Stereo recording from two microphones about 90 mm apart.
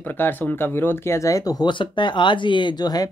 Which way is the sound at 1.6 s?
65° left (ahead or behind).